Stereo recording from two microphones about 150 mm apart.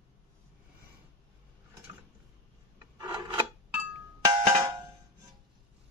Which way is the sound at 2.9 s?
25° right (ahead or behind).